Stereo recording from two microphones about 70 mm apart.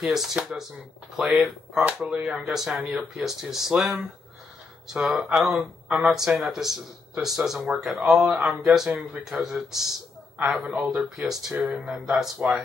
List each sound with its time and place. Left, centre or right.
0.0 s a man's voice: centre
2.1 s speech: centre
2.4 s a man's voice: centre